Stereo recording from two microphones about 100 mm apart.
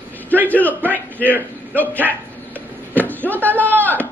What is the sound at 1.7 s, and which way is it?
Speech, 15° left (ahead or behind).